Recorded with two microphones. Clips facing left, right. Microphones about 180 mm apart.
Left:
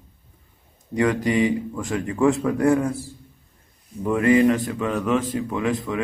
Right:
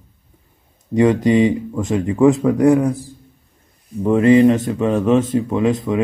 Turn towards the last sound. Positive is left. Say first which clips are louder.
# right 7 dB
turn(degrees=-25)  # may be behind; listen again after turning